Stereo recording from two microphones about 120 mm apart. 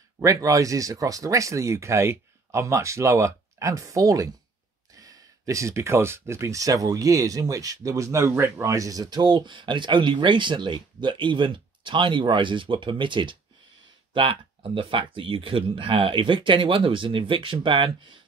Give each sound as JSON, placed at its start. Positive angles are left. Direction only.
{"t": 0.2, "sound": "speech", "side_deg": -25}